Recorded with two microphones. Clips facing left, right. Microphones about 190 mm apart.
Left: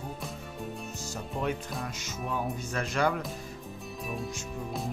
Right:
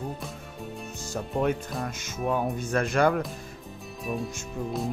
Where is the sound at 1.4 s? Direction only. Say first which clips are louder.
Right 5 dB; 50° right (ahead or behind).